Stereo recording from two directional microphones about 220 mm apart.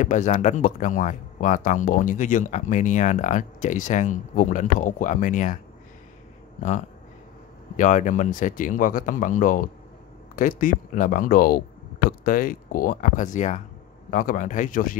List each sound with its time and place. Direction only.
0.0 s speech: 35° left (ahead or behind)
7.7 s speech: 35° left (ahead or behind)